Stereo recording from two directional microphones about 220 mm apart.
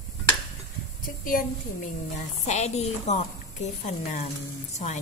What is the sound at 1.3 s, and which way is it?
A woman's voice, 40° left (ahead or behind).